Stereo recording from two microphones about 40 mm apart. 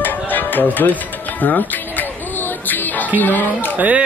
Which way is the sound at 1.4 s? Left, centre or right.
Left.